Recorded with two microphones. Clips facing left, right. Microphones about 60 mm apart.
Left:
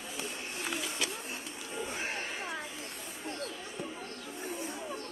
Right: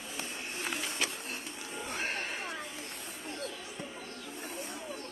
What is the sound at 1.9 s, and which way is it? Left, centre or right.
Chatter, right.